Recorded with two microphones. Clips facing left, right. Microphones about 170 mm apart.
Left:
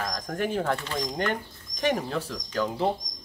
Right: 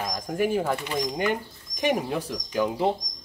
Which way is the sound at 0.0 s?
10° right (ahead or behind).